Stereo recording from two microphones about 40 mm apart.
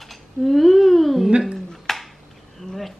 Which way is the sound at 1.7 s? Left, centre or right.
Centre.